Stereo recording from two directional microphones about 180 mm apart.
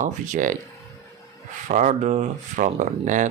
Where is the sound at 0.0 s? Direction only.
45° right (ahead or behind).